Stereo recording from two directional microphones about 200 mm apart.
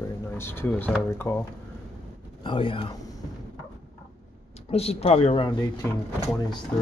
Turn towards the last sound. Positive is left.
turn(degrees=20)  # may be behind; listen again after turning